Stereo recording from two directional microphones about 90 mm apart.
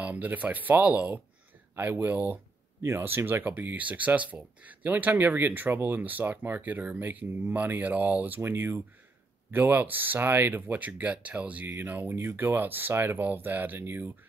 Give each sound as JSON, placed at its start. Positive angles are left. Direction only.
{"t": 0.0, "sound": "speech", "side_deg": -15}